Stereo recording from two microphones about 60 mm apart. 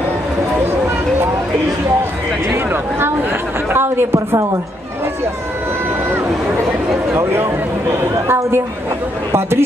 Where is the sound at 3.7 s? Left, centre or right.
Right.